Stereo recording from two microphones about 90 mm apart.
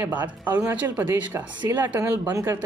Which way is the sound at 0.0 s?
20° right (ahead or behind).